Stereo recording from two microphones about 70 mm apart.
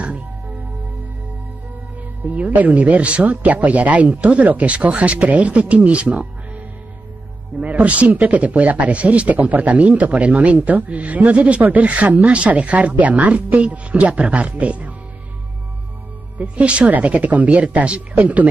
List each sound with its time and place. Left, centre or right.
2.2 s a man's voice: right
7.6 s a man's voice: centre
16.3 s a man's voice: centre